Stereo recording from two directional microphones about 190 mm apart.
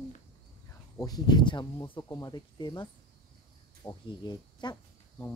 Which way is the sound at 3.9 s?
20° left (ahead or behind).